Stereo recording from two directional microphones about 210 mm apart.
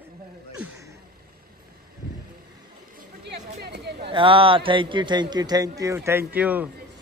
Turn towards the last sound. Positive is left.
turn(degrees=-10)  # may be behind; listen again after turning